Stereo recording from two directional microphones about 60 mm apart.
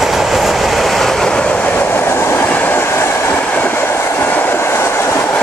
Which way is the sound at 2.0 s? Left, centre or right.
Left.